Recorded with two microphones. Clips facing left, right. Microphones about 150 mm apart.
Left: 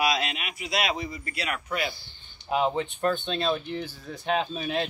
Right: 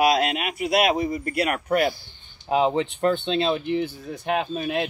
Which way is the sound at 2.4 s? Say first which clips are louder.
Right 4 dB; 25° right (ahead or behind).